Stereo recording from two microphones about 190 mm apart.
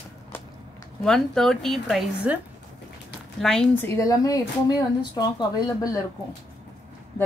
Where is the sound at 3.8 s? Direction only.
15° left (ahead or behind).